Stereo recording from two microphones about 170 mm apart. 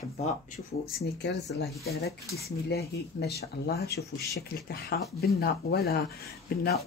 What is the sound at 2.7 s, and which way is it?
Speech, 70° left (ahead or behind).